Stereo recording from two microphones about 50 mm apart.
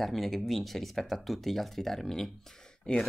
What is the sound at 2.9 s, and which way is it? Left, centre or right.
Speech, centre.